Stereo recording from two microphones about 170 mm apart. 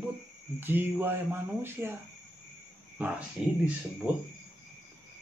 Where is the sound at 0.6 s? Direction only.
10° right (ahead or behind).